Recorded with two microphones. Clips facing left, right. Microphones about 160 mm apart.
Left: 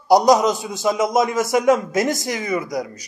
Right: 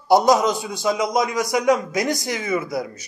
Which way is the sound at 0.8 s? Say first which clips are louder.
Left 3 dB; 20° left (ahead or behind).